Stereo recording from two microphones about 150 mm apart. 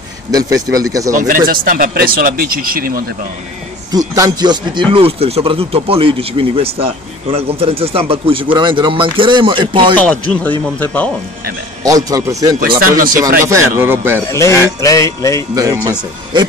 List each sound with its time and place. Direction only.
0.3 s speech: 25° right (ahead or behind)
1.5 s speech: 65° right (ahead or behind)
4.1 s speech: 25° right (ahead or behind)
9.9 s speech: 10° left (ahead or behind)
11.8 s speech: 25° right (ahead or behind)
12.5 s speech: 70° right (ahead or behind)
13.5 s speech: 15° right (ahead or behind)
14.2 s speech: 20° left (ahead or behind)
15.5 s speech: 20° right (ahead or behind)